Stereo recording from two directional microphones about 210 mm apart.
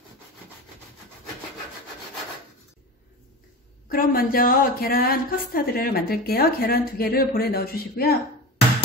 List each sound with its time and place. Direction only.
3.9 s speech: 45° left (ahead or behind)